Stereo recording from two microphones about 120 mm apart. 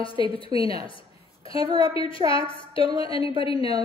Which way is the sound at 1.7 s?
50° left (ahead or behind).